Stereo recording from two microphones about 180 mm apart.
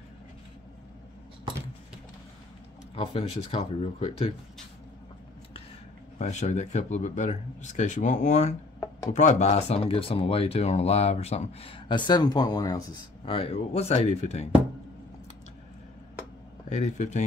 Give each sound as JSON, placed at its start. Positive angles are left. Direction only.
{"t": 3.0, "sound": "speech", "side_deg": 30}
{"t": 6.1, "sound": "speech", "side_deg": 40}
{"t": 16.6, "sound": "speech", "side_deg": 40}